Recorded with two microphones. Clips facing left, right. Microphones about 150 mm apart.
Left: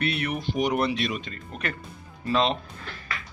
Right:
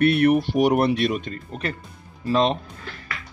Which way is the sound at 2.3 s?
40° right (ahead or behind).